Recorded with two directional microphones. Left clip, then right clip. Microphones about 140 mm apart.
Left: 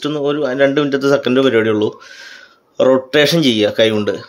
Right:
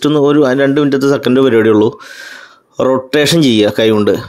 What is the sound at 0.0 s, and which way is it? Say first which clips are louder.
A man's voice: right 8 dB; 45° right (ahead or behind).